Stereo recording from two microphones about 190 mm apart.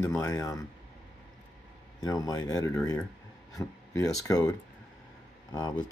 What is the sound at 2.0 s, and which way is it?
Speech, 20° left (ahead or behind).